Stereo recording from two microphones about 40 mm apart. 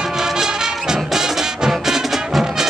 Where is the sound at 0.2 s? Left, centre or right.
Centre.